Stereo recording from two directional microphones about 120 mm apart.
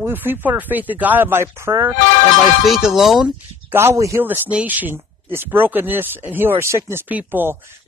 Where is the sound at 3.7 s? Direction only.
20° right (ahead or behind).